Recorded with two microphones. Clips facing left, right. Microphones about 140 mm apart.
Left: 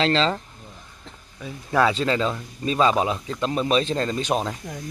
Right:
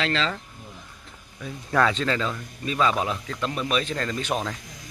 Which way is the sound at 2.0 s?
25° left (ahead or behind).